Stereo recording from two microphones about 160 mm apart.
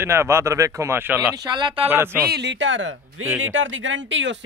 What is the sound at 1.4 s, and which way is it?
Speech, 30° right (ahead or behind).